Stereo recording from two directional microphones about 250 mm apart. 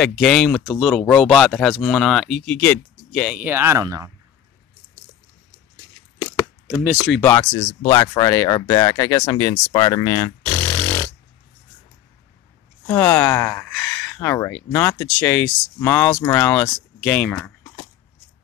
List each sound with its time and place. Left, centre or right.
0.0 s speech: centre
6.7 s speech: centre
7.1 s speech: centre
12.8 s speech: centre